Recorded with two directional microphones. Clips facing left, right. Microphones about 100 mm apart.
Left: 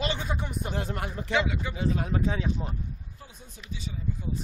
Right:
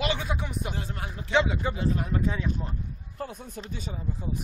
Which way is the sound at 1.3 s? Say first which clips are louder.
Right 4 dB; 30° right (ahead or behind).